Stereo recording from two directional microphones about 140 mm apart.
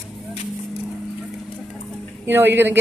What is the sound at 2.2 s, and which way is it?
Speech, 15° right (ahead or behind).